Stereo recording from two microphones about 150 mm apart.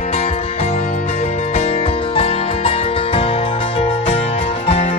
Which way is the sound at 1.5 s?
40° left (ahead or behind).